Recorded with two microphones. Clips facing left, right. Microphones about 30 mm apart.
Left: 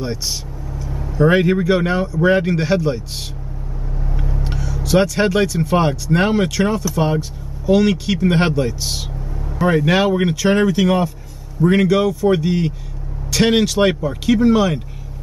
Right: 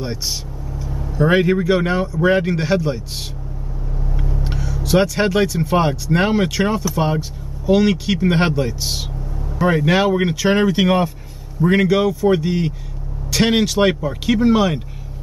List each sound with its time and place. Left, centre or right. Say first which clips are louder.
1.1 s speech: left 1 dB; centre
4.4 s speech: even; centre
10.7 s speech: even; centre
11.6 s speech: left 1 dB; centre